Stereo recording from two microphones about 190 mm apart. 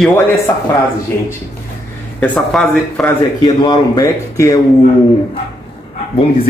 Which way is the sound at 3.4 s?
20° left (ahead or behind).